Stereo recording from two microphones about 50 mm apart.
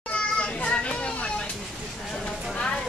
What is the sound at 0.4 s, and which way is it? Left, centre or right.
Children playing, left.